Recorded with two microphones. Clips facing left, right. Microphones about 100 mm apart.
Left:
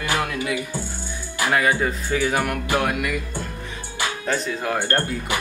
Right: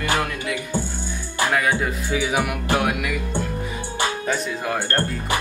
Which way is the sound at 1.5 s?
Centre (ahead or behind).